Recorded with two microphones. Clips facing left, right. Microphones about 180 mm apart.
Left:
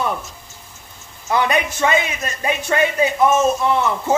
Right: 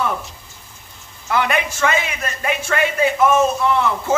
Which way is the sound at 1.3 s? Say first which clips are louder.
Left 1 dB; 20° left (ahead or behind).